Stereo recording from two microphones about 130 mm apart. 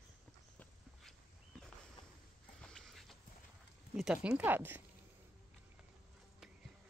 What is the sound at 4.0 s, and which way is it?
Speech, 5° right (ahead or behind).